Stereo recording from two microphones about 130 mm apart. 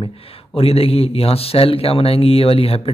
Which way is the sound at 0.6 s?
50° left (ahead or behind).